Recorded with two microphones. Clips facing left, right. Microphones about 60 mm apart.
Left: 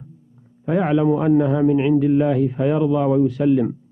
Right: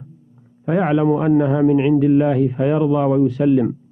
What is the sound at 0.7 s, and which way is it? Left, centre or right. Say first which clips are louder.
A man's voice: right 1 dB; right.